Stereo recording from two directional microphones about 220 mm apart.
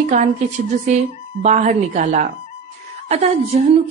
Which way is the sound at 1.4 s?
30° right (ahead or behind).